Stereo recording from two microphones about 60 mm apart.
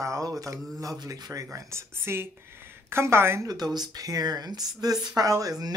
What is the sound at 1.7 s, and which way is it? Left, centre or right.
A woman's voice, right.